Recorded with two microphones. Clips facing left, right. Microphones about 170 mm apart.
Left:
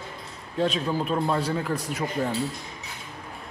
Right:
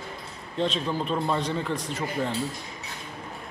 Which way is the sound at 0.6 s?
10° left (ahead or behind).